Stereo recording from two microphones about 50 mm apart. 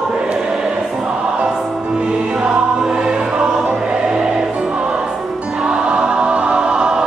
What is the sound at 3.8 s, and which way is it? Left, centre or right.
Choir, centre.